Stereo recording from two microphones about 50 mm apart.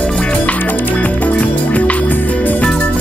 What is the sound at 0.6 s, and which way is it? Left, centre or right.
Music, left.